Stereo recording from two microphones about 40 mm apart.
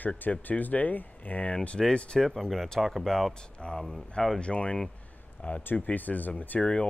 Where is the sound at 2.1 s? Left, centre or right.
Centre.